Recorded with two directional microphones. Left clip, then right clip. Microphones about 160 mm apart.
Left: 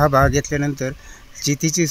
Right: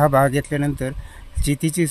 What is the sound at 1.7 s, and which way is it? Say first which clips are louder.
Speech: left 3 dB; 30° right (ahead or behind).